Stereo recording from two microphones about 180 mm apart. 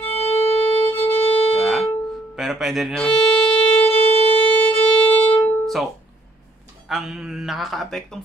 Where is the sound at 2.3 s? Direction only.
Centre (ahead or behind).